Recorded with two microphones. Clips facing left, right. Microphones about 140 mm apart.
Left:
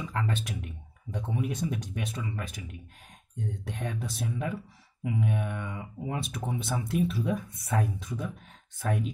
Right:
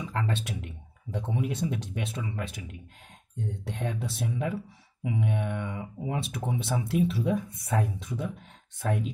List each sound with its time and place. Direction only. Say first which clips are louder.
0.0 s speech: right 1 dB; 25° right (ahead or behind)